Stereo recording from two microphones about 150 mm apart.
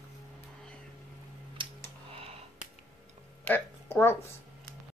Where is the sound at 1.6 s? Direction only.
35° right (ahead or behind).